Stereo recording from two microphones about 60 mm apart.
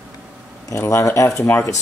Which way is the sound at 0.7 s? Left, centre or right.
Left.